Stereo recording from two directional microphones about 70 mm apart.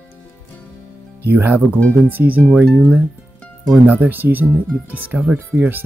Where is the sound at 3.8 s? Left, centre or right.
Right.